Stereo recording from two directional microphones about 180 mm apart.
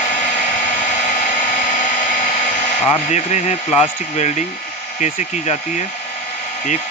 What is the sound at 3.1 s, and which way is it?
Speech, 40° left (ahead or behind).